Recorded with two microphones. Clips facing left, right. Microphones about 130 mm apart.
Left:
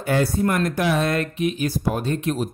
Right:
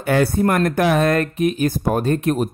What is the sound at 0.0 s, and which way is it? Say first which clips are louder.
Speech: right 4 dB; 65° right (ahead or behind).